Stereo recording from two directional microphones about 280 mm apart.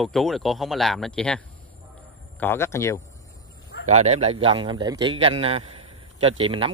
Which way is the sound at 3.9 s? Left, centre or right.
Right.